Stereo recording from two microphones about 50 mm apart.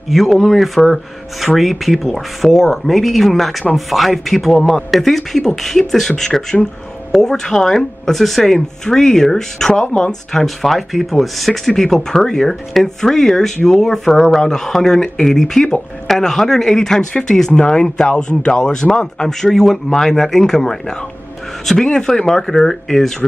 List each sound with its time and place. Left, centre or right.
0.1 s speech: centre
10.4 s speech: centre